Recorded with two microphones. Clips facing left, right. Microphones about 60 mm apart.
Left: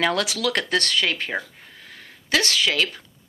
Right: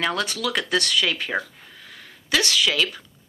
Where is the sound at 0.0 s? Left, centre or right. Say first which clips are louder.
Left 2 dB; left.